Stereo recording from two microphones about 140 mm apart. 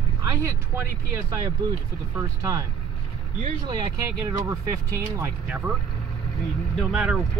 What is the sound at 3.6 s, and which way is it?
Speech, 35° right (ahead or behind).